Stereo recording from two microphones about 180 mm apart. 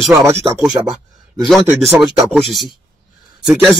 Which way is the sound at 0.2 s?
15° right (ahead or behind).